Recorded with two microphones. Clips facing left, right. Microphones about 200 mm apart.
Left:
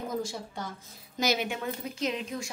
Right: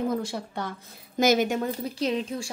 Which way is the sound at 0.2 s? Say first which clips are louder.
Right 4 dB; 65° right (ahead or behind).